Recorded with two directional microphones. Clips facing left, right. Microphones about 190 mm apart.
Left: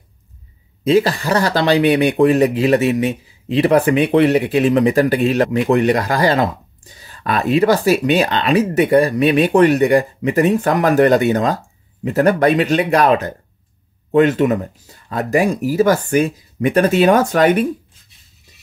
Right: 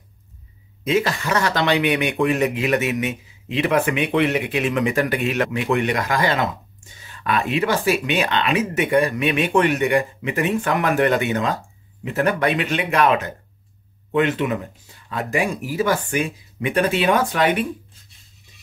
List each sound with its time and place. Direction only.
0.8 s speech: 35° left (ahead or behind)